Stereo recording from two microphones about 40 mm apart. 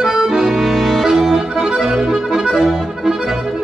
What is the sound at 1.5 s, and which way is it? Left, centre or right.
Accordion, centre.